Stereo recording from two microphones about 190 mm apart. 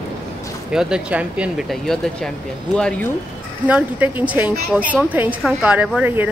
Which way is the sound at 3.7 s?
10° right (ahead or behind).